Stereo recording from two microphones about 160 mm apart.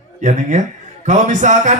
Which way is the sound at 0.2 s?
50° right (ahead or behind).